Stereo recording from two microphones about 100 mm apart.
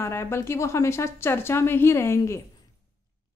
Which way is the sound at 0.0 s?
25° left (ahead or behind).